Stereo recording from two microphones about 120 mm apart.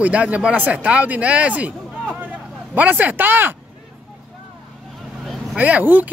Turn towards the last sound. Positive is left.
turn(degrees=-15)  # may be behind; listen again after turning